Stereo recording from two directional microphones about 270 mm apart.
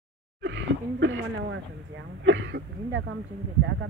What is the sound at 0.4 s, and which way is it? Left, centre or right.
Speech, right.